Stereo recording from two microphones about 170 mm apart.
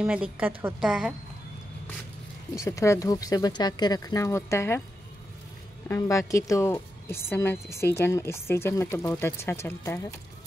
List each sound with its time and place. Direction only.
0.0 s a woman's voice: 5° right (ahead or behind)
2.5 s speech: 15° left (ahead or behind)
5.9 s speech: 20° left (ahead or behind)